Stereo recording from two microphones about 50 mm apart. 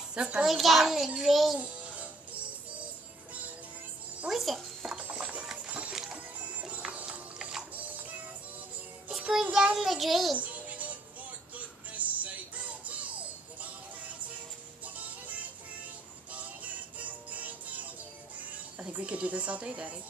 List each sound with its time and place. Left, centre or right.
0.1 s a child's voice: centre
0.5 s a child's voice: centre
1.6 s music: right
4.3 s speech: centre
5.1 s clip-clop: right
5.7 s music: right
7.1 s a sound: centre
9.3 s a child's voice: centre
10.3 s music: right
15.0 s music: right
17.3 s music: right
18.8 s a woman's voice: right